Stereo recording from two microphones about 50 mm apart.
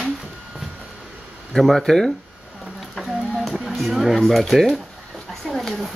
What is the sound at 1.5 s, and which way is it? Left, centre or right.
Speech, centre.